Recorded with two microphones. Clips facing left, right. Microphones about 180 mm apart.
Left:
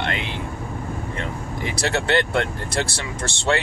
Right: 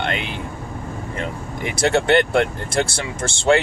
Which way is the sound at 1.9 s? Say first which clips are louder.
Right 5 dB; 25° right (ahead or behind).